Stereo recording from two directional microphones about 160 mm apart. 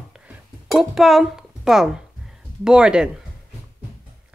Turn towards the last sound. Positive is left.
turn(degrees=-5)  # may be behind; listen again after turning